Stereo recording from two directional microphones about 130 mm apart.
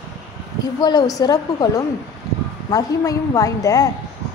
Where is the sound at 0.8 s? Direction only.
30° left (ahead or behind).